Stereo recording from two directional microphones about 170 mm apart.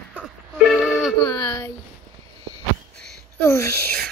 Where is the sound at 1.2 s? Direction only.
25° left (ahead or behind).